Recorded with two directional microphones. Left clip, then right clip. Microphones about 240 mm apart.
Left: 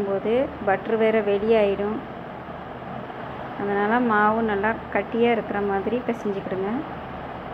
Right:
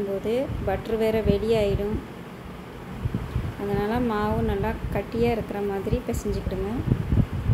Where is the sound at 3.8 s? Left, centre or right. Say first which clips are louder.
Left 6 dB; centre.